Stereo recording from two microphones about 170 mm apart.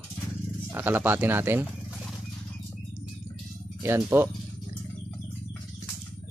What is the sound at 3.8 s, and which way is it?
Speech, 15° right (ahead or behind).